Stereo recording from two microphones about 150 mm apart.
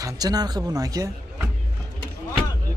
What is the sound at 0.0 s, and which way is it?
Speech, 25° right (ahead or behind).